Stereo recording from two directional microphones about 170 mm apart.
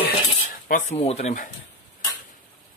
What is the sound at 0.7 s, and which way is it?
Speech, 45° left (ahead or behind).